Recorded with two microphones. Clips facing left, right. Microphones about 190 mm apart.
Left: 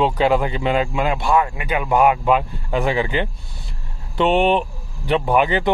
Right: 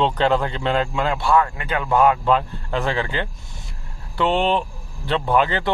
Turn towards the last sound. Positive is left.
turn(degrees=15)  # may be behind; listen again after turning